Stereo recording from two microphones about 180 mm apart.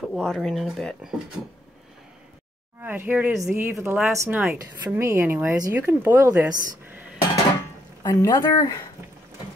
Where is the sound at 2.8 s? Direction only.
10° right (ahead or behind).